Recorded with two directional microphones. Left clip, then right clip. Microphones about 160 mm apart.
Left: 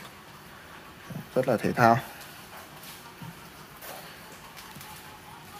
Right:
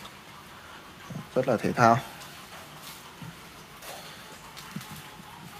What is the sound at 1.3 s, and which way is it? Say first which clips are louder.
Speech: even; 5° left (ahead or behind).